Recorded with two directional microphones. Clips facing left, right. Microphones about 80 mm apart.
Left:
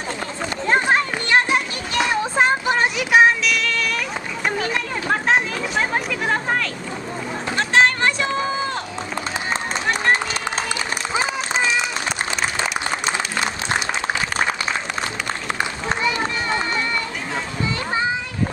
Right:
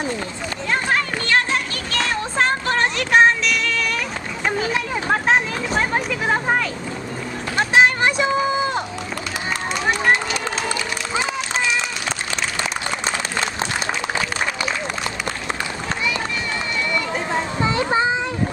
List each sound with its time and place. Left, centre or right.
0.7 s children playing: left; by 3.8 s centre
4.5 s a sound: centre
7.5 s run: centre
16.0 s run: left
17.6 s children playing: right